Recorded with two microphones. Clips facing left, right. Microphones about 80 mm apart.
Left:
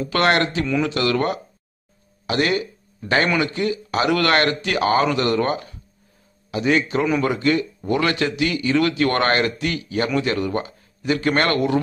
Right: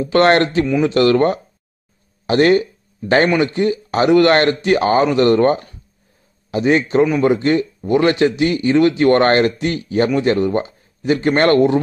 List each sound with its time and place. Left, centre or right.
0.0 s a man's voice: right